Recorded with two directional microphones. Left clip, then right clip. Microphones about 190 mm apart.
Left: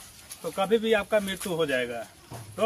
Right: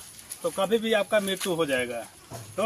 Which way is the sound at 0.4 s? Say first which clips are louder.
Even; 10° left (ahead or behind).